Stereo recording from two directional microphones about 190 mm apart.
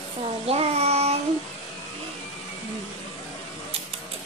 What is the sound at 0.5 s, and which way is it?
Child singing, 30° right (ahead or behind).